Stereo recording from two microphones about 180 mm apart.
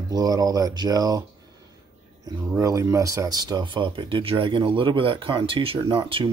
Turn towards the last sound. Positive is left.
turn(degrees=-30)  # may be behind; listen again after turning